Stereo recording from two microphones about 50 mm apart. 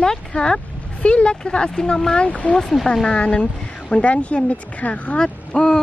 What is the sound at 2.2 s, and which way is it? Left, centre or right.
Speech, left.